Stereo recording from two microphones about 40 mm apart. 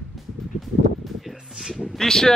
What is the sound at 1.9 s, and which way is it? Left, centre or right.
Speech, centre.